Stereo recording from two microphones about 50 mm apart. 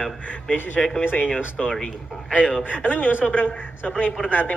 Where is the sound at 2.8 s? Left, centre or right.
Left.